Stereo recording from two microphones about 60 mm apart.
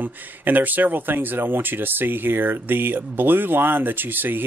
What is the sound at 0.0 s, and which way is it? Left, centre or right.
Speech, right.